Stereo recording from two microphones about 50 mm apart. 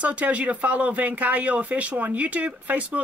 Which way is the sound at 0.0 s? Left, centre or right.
Right.